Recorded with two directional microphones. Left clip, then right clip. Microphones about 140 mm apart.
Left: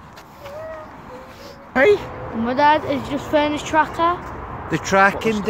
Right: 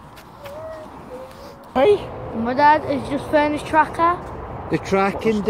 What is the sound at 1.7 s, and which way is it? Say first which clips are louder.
Speech: left 1 dB; 40° left (ahead or behind).